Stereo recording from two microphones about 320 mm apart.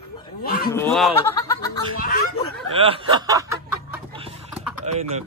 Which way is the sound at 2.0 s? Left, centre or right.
Left.